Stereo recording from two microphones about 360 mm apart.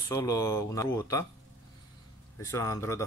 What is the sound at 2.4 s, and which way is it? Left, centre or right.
Speech, centre.